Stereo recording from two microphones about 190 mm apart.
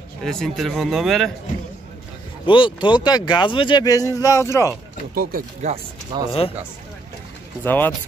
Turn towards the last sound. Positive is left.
turn(degrees=10)  # may be behind; listen again after turning